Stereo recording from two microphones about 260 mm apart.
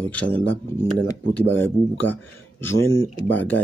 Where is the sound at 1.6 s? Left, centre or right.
Centre.